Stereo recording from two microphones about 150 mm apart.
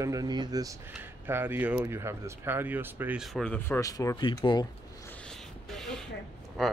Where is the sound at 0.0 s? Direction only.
25° right (ahead or behind).